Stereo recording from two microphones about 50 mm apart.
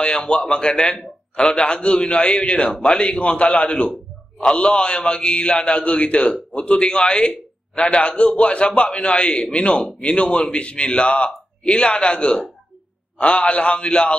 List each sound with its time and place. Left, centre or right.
0.0 s a man's voice: centre